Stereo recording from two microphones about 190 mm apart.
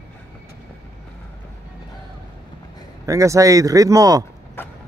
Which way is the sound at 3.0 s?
15° right (ahead or behind).